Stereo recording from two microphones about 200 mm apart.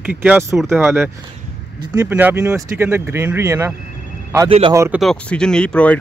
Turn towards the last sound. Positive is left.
turn(degrees=5)  # may be behind; listen again after turning